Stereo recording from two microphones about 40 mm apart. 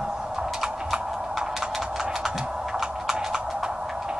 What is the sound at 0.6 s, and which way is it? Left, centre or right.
Typing, centre.